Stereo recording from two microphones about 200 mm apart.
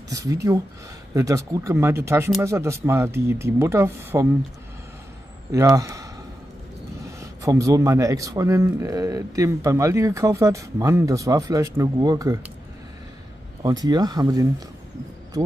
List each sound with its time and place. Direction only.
0.1 s speech: 15° right (ahead or behind)
5.5 s speech: 15° right (ahead or behind)
7.2 s speech: 15° right (ahead or behind)
13.6 s speech: 20° right (ahead or behind)